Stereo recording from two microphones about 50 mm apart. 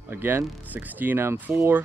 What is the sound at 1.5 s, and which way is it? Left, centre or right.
Speech, centre.